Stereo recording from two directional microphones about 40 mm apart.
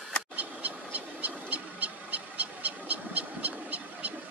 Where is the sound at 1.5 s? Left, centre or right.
Right.